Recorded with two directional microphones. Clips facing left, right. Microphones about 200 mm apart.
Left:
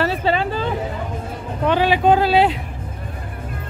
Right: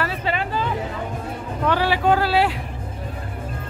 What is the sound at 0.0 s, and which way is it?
Vehicle, 30° left (ahead or behind).